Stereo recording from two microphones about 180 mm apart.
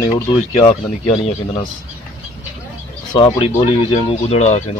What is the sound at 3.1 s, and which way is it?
Speech, 25° left (ahead or behind).